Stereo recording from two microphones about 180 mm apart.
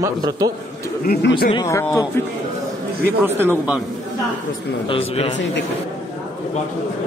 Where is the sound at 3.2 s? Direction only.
10° right (ahead or behind).